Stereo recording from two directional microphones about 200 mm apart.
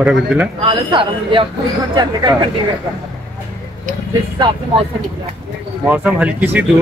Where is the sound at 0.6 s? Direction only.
25° right (ahead or behind).